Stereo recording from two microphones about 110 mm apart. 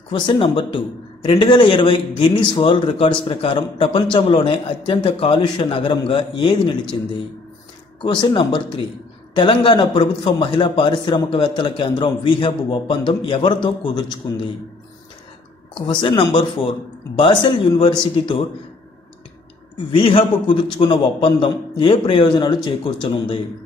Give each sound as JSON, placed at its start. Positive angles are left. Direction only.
{"t": 0.1, "sound": "speech", "side_deg": 50}
{"t": 8.0, "sound": "speech", "side_deg": 45}
{"t": 15.9, "sound": "speech", "side_deg": 45}
{"t": 19.9, "sound": "speech", "side_deg": 50}